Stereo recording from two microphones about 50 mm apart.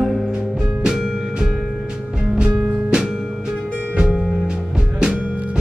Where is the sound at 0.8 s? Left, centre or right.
Centre.